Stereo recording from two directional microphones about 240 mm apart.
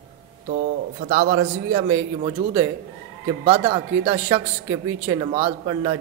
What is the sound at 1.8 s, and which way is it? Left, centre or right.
A woman's voice, centre.